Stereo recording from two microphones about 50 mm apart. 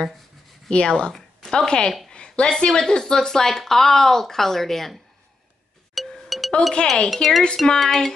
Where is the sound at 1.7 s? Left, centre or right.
Centre.